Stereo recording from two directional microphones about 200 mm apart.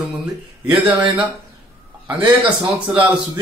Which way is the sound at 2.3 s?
25° right (ahead or behind).